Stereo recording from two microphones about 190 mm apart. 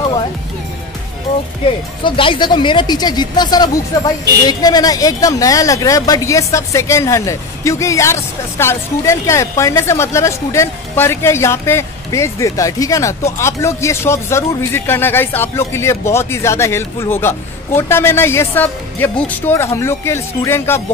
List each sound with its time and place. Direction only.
2.0 s speech: 25° left (ahead or behind)